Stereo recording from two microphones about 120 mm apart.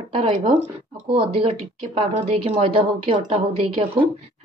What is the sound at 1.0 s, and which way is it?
A woman's voice, 50° right (ahead or behind).